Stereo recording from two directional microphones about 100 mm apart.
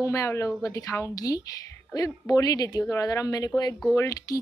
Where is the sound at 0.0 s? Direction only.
30° left (ahead or behind).